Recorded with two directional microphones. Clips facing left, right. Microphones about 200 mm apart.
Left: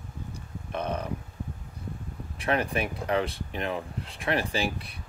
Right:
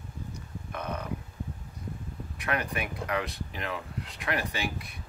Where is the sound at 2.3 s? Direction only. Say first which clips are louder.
Left 5 dB; 30° left (ahead or behind).